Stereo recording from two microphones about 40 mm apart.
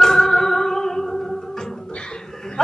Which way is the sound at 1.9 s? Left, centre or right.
Centre.